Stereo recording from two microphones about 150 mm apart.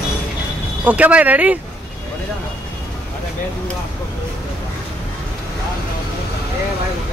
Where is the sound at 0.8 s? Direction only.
10° right (ahead or behind).